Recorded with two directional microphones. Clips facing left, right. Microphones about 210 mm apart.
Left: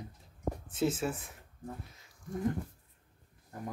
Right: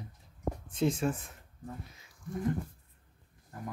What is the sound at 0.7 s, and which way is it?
Speech, 5° left (ahead or behind).